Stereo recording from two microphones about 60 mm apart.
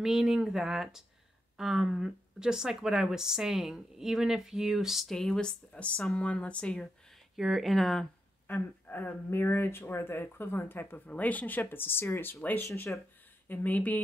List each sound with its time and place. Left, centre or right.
0.0 s a woman's voice: centre
7.3 s speech: centre
8.5 s speech: left
11.1 s a woman's voice: left